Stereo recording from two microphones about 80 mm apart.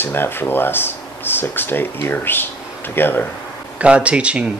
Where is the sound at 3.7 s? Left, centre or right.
Centre.